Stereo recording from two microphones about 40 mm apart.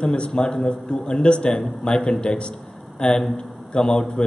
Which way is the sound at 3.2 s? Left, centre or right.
Centre.